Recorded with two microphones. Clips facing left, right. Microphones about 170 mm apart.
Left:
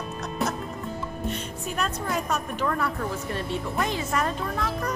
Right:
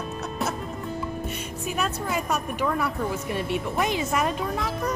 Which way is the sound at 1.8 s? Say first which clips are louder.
Even; 5° right (ahead or behind).